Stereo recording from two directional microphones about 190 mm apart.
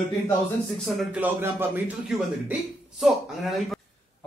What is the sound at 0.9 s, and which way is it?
Speech, 10° right (ahead or behind).